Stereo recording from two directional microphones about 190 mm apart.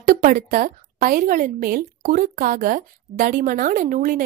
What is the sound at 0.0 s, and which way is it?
A woman's voice, 45° right (ahead or behind).